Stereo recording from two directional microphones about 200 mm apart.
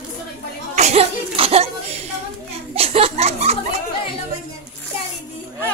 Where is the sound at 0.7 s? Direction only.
30° right (ahead or behind).